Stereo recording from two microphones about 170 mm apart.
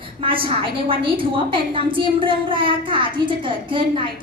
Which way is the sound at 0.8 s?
30° right (ahead or behind).